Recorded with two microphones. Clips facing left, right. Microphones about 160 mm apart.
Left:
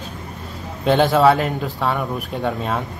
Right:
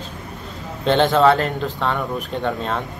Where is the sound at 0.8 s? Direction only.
5° left (ahead or behind).